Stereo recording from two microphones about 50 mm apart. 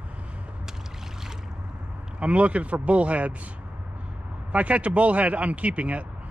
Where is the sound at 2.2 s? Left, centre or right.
Right.